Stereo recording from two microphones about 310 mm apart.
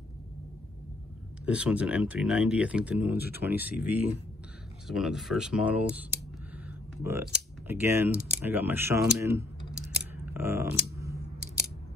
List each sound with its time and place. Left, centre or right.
1.4 s speech: centre
3.2 s speech: left
3.4 s speech: centre
9.9 s scissors: centre